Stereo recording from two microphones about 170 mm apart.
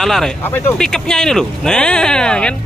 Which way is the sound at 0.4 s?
15° left (ahead or behind).